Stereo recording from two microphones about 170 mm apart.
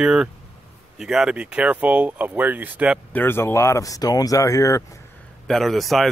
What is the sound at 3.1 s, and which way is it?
Speech, 15° left (ahead or behind).